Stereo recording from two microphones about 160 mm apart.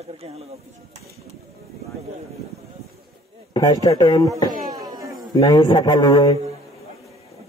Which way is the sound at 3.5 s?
25° left (ahead or behind).